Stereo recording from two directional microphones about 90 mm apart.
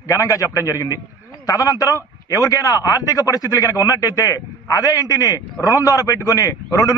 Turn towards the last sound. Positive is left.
turn(degrees=40)  # may be behind; listen again after turning